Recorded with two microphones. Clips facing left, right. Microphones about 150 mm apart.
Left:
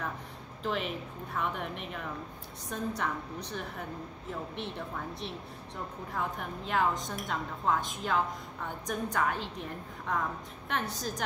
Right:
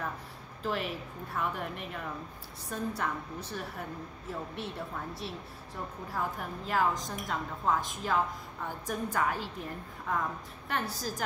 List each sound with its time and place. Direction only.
0.7 s a woman's voice: centre (ahead or behind)